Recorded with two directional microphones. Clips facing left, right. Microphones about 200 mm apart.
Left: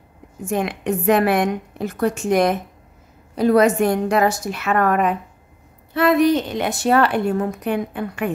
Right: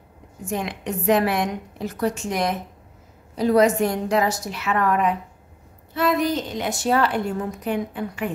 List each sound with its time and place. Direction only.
0.5 s a woman's voice: 55° left (ahead or behind)